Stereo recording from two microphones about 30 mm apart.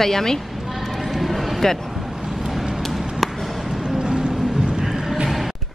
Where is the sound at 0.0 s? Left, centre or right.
Centre.